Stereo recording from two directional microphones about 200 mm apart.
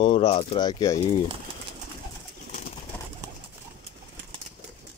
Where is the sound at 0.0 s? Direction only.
25° left (ahead or behind).